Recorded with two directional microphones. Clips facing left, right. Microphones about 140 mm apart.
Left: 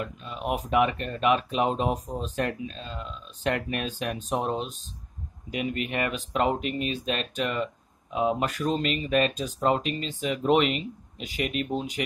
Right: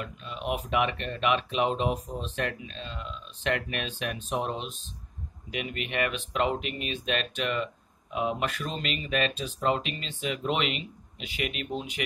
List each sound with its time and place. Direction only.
0.0 s speech: 35° left (ahead or behind)